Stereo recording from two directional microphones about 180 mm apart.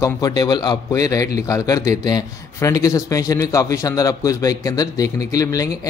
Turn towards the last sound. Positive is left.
turn(degrees=20)  # may be behind; listen again after turning